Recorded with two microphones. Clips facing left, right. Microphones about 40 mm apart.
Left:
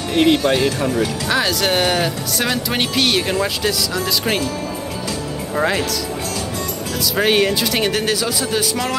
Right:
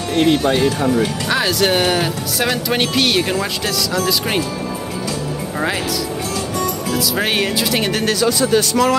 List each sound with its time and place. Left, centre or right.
0.1 s speech: centre
0.7 s speech: right
1.3 s speech: centre
5.6 s speech: centre
6.9 s speech: centre